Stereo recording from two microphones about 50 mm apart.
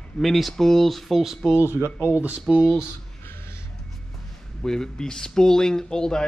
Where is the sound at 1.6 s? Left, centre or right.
Right.